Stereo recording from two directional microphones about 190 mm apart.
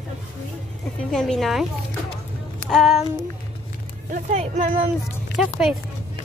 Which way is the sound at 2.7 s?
Centre (ahead or behind).